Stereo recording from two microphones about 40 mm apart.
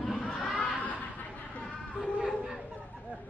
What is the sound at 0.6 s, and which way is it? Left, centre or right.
Chuckle, left.